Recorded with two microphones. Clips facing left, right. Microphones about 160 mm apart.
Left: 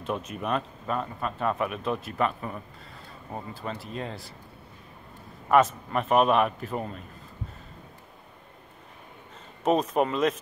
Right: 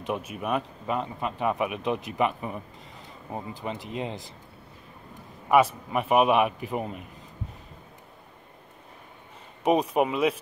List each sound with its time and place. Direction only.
0.0 s speech: 10° right (ahead or behind)
5.5 s speech: 10° right (ahead or behind)
9.6 s speech: 10° right (ahead or behind)